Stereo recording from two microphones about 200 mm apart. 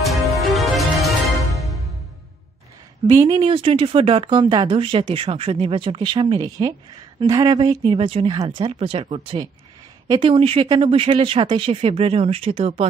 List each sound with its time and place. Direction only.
0.5 s music: centre (ahead or behind)
3.2 s speech: 25° right (ahead or behind)